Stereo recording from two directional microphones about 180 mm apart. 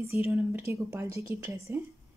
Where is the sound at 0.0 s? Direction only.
10° right (ahead or behind).